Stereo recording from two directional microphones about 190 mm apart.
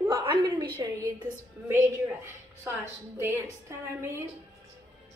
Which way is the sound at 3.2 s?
15° right (ahead or behind).